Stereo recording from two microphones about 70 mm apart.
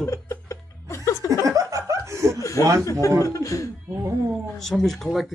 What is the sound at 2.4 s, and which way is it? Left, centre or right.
Chuckle, left.